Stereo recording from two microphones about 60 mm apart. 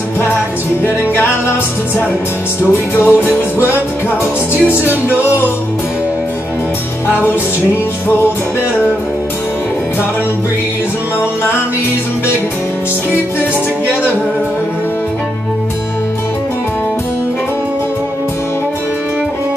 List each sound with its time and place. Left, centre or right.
0.8 s music: left
4.6 s music: left